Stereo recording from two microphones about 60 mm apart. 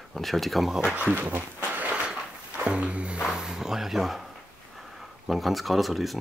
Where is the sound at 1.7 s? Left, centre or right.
Right.